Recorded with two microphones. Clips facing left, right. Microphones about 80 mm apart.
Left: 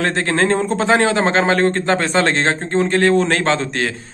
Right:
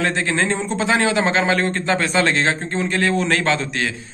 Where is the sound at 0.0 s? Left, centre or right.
Left.